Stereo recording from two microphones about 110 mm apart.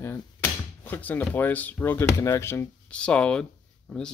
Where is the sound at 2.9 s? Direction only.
10° left (ahead or behind).